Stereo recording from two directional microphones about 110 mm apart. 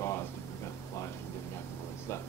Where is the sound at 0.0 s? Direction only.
20° left (ahead or behind).